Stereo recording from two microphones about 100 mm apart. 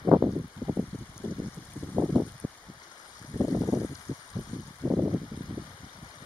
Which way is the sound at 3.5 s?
10° right (ahead or behind).